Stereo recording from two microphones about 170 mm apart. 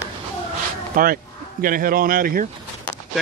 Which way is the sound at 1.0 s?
55° right (ahead or behind).